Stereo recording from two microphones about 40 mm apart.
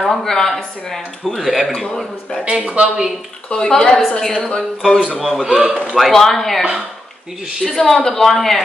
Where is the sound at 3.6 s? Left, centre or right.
Centre.